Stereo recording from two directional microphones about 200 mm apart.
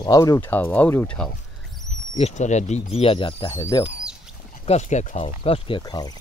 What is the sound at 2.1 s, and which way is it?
Speech, 35° left (ahead or behind).